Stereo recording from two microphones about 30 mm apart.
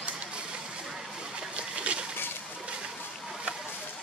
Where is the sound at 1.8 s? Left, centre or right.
Right.